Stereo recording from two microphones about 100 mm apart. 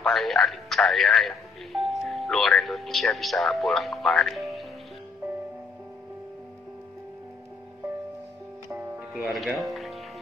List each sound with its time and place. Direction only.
0.0 s speech: 5° left (ahead or behind)
8.6 s music: 20° right (ahead or behind)
9.3 s speech: centre (ahead or behind)